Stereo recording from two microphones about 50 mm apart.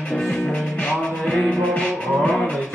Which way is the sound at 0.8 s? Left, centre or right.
Centre.